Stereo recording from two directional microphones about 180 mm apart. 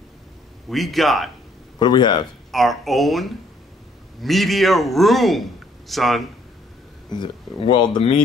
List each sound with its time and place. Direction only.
0.7 s a man's voice: centre (ahead or behind)
1.8 s speech: 25° left (ahead or behind)
2.5 s a man's voice: centre (ahead or behind)
7.1 s speech: 25° left (ahead or behind)